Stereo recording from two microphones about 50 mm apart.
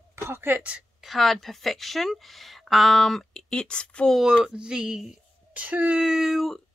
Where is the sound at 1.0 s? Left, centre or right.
Centre.